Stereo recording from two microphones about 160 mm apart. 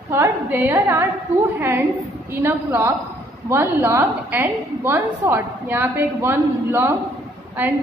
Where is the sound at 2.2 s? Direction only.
15° right (ahead or behind).